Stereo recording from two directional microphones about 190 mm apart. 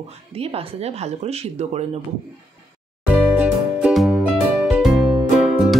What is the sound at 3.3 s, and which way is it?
Music, 5° right (ahead or behind).